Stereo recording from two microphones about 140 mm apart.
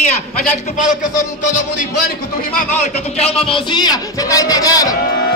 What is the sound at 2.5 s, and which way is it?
Speech, 75° left (ahead or behind).